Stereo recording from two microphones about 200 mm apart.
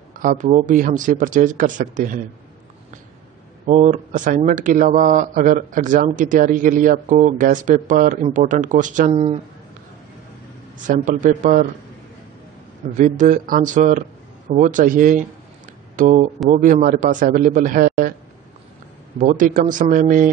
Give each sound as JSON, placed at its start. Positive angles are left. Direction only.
{"t": 0.1, "sound": "speech", "side_deg": -40}
{"t": 3.6, "sound": "speech", "side_deg": -35}
{"t": 10.8, "sound": "speech", "side_deg": -40}
{"t": 12.9, "sound": "a man's voice", "side_deg": -40}
{"t": 19.1, "sound": "speech", "side_deg": -40}